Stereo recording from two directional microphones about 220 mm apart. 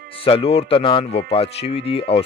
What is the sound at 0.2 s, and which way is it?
Speech, 25° left (ahead or behind).